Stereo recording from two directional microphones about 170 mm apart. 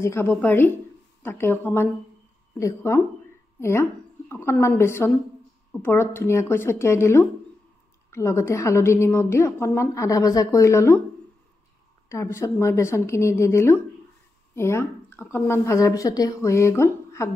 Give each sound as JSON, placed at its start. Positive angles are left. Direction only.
{"t": 0.0, "sound": "a woman's voice", "side_deg": 15}
{"t": 12.1, "sound": "a woman's voice", "side_deg": 15}